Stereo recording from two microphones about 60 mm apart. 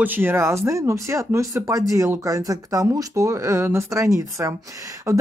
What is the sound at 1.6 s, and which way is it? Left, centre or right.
Speech, right.